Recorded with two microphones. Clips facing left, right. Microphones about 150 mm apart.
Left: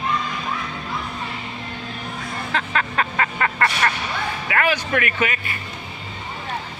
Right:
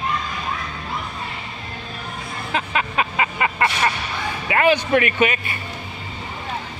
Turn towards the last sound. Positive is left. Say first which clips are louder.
# right 4 dB
turn(degrees=-25)  # may be behind; listen again after turning